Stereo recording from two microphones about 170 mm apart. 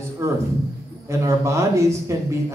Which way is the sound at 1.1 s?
15° right (ahead or behind).